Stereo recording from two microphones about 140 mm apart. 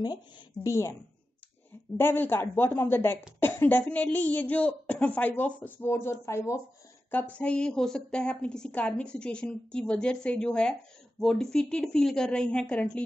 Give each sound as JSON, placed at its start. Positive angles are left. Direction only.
{"t": 0.7, "sound": "a woman's voice", "side_deg": 20}
{"t": 2.0, "sound": "a woman's voice", "side_deg": 15}